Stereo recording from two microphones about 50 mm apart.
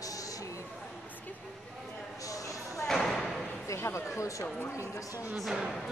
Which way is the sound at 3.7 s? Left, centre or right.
Left.